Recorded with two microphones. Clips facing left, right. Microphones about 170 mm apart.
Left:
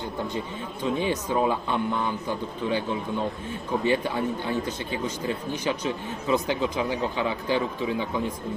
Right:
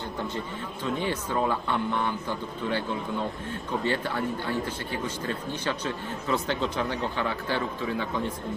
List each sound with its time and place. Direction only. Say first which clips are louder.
0.8 s speech: left 4 dB; 15° left (ahead or behind)
3.8 s speech: left 4 dB; 15° left (ahead or behind)